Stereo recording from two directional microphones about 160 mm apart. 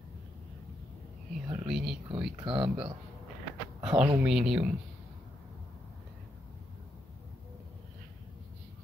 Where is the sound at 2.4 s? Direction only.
30° right (ahead or behind).